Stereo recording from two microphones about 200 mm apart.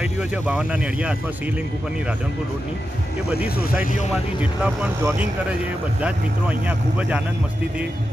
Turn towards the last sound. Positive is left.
turn(degrees=-5)  # may be behind; listen again after turning